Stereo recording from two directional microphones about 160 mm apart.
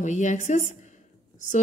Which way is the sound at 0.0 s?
50° left (ahead or behind).